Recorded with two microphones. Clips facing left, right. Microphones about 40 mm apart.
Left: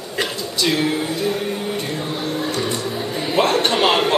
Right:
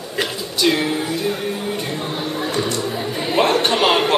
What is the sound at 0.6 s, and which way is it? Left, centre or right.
Speech, centre.